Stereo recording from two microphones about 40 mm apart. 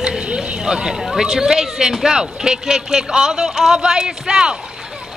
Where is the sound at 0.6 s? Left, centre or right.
Centre.